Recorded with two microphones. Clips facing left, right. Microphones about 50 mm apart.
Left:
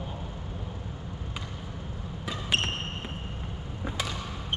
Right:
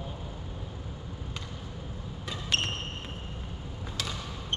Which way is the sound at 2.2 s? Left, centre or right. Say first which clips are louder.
Left 2 dB; centre.